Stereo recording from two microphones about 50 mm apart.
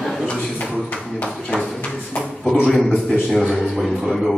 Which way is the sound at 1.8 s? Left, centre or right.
Centre.